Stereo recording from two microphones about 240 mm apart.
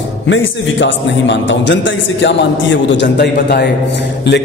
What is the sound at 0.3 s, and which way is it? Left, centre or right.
A man's voice, left.